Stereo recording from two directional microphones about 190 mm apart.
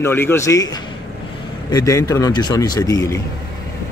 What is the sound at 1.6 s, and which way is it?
Speech, 20° left (ahead or behind).